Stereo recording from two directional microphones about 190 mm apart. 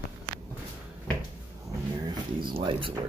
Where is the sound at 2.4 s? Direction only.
25° right (ahead or behind).